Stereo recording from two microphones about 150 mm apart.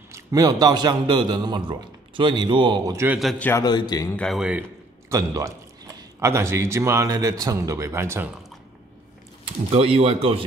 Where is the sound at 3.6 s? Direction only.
25° left (ahead or behind).